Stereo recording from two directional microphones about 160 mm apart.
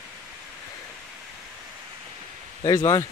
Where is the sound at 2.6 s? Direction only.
25° left (ahead or behind).